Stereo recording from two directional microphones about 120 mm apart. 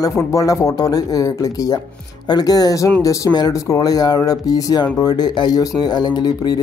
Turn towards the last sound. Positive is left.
turn(degrees=35)  # may be behind; listen again after turning